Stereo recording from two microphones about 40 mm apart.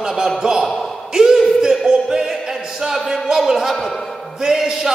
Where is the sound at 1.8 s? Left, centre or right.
Centre.